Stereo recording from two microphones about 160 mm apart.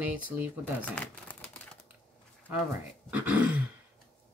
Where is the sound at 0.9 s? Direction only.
10° left (ahead or behind).